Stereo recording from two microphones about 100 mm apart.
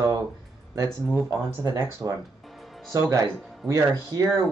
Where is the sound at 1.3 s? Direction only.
40° right (ahead or behind).